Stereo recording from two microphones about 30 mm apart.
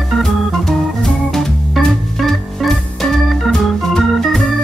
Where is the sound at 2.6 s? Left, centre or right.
Centre.